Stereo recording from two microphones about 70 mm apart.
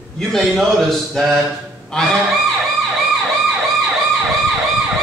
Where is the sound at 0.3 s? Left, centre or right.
Centre.